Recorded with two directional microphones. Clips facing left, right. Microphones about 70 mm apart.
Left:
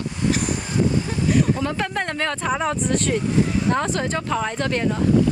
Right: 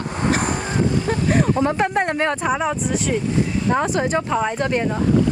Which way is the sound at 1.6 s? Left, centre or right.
Right.